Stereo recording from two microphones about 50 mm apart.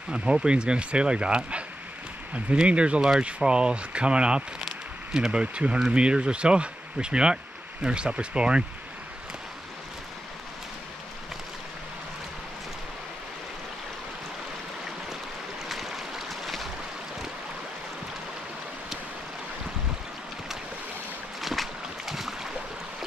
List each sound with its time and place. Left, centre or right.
0.1 s speech: right
4.6 s a sound: centre
5.9 s speech: centre
15.6 s boat: centre
21.4 s boat: centre